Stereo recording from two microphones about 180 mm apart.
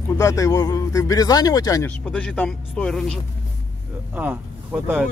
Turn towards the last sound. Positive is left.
turn(degrees=-10)  # may be behind; listen again after turning